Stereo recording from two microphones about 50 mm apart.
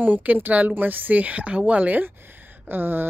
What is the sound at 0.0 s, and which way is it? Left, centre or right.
A woman's voice, right.